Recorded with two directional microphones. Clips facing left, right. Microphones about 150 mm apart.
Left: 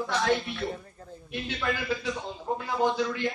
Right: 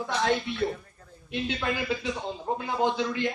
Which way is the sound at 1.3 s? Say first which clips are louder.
Right 2 dB; 20° right (ahead or behind).